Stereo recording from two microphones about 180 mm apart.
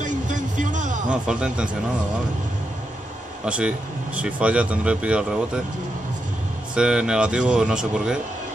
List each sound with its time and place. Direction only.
0.0 s a sound: 45° right (ahead or behind)
1.2 s speech: 5° right (ahead or behind)
3.4 s speech: 5° right (ahead or behind)
6.7 s speech: 5° right (ahead or behind)